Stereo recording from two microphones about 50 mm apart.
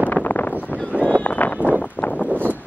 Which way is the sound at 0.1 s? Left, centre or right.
Left.